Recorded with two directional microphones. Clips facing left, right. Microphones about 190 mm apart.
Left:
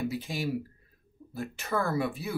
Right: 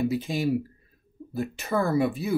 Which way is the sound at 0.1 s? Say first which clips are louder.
Right 7 dB; 20° right (ahead or behind).